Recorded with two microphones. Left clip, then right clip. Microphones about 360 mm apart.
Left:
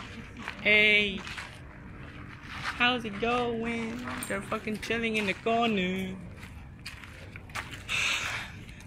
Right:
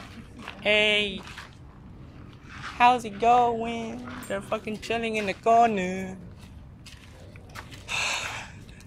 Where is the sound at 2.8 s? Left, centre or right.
Centre.